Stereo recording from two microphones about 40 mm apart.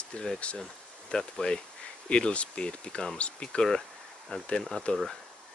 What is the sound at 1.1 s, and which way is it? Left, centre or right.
Speech, centre.